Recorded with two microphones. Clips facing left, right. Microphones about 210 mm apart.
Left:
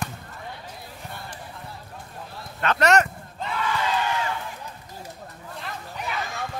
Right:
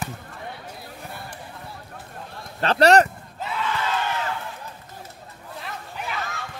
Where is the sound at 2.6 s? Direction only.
35° right (ahead or behind).